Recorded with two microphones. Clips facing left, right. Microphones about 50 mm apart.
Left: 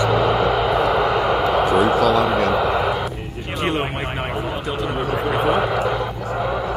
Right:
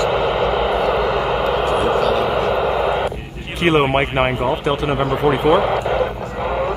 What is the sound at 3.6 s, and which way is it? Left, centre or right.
Speech, right.